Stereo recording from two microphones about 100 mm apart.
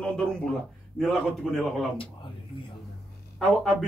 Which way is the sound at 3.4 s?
Centre (ahead or behind).